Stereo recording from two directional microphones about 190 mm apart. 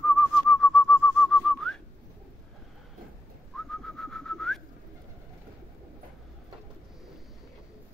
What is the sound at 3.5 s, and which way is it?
Bird, centre (ahead or behind).